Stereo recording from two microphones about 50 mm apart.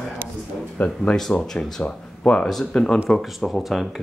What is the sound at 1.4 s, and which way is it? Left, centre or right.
Speech, centre.